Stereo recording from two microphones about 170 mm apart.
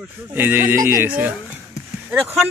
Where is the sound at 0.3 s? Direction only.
10° right (ahead or behind).